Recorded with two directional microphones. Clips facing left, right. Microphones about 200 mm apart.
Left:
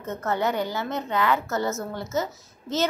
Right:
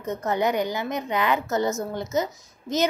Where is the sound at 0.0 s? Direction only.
15° right (ahead or behind).